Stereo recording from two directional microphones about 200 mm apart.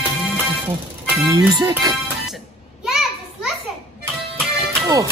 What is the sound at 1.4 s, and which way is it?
Speech, 20° right (ahead or behind).